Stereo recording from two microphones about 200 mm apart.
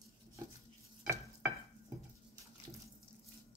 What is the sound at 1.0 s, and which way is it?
Stir, 10° right (ahead or behind).